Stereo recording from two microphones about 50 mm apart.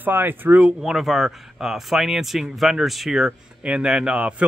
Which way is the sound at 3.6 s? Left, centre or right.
Right.